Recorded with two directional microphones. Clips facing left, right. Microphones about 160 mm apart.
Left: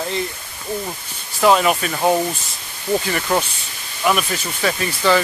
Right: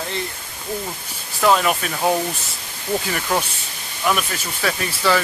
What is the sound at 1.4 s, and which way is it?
Speech, 5° left (ahead or behind).